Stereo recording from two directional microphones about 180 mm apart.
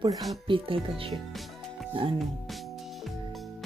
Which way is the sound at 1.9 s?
30° right (ahead or behind).